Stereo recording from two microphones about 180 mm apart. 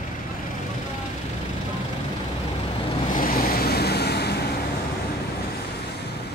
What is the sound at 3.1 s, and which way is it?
Waves, 55° left (ahead or behind).